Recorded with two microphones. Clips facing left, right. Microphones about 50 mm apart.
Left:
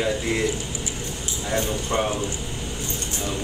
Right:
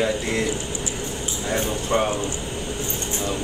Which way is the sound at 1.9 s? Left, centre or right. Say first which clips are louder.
Right 3 dB; right.